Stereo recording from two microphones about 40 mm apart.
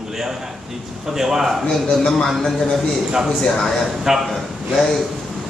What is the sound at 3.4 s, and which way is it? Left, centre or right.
Speech, centre.